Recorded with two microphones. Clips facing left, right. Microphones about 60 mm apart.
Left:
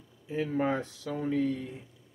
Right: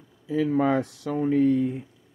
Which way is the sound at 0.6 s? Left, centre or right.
Right.